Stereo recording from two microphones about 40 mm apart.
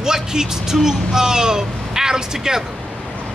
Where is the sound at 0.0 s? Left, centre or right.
Centre.